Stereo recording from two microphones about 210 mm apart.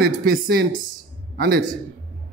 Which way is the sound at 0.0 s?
45° right (ahead or behind).